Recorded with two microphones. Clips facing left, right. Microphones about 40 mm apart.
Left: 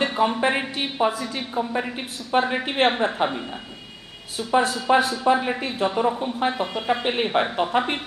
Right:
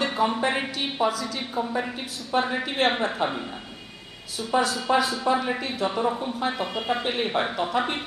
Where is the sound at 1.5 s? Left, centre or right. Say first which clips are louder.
Left 2 dB; centre; by 2.9 s left.